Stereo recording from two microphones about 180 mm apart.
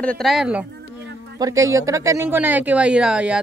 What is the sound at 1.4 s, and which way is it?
Speech, 15° right (ahead or behind).